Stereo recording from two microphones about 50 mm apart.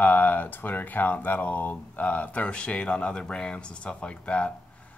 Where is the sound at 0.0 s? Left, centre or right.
Left.